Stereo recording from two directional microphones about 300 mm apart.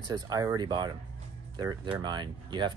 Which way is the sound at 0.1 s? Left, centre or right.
Centre.